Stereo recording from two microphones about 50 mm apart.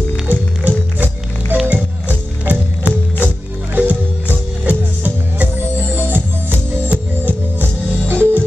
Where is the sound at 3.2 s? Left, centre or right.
Right.